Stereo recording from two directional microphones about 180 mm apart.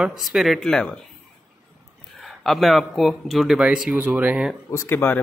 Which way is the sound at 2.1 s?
Centre (ahead or behind).